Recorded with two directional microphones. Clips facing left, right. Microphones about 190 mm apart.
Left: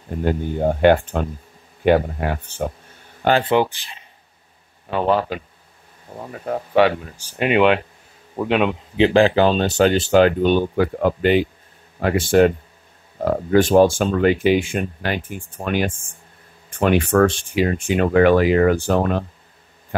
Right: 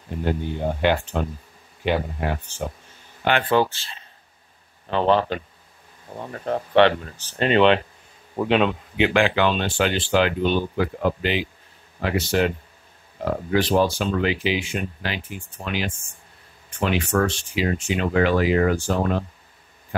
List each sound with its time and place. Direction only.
0.1 s speech: 50° left (ahead or behind)
3.2 s speech: 40° left (ahead or behind)
3.4 s speech: 15° left (ahead or behind)
8.9 s speech: 35° left (ahead or behind); by 20.1 s 55° left (ahead or behind)